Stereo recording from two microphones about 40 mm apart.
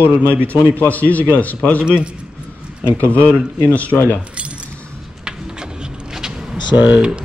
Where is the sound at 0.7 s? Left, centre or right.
Left.